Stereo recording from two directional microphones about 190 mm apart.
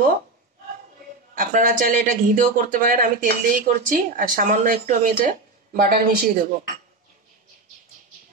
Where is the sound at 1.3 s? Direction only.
45° right (ahead or behind).